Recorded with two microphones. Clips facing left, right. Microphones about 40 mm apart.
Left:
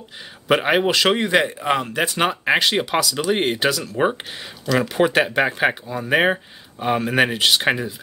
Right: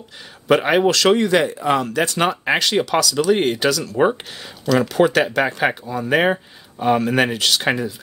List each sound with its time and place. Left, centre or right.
0.5 s speech: centre